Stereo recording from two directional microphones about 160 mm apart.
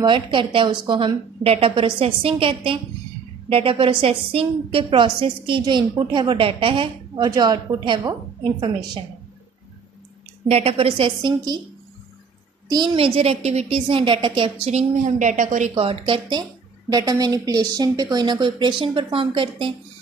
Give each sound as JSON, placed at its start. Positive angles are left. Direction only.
{"t": 0.0, "sound": "a woman's voice", "side_deg": -30}
{"t": 10.5, "sound": "a woman's voice", "side_deg": -35}
{"t": 12.6, "sound": "a woman's voice", "side_deg": -25}
{"t": 15.7, "sound": "a woman's voice", "side_deg": -35}